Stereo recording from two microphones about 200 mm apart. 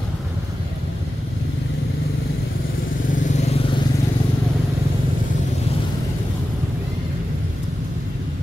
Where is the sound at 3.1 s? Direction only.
35° left (ahead or behind).